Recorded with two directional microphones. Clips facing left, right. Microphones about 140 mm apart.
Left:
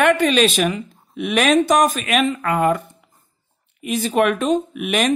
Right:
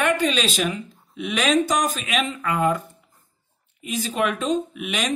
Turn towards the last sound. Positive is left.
turn(degrees=55)  # may be behind; listen again after turning